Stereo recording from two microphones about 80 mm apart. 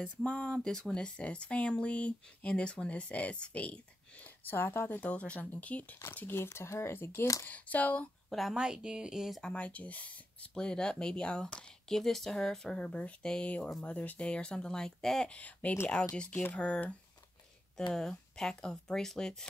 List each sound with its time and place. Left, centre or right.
0.0 s speech: centre
8.3 s a woman's voice: centre
8.5 s speech: centre
9.4 s speech: centre
17.9 s speech: centre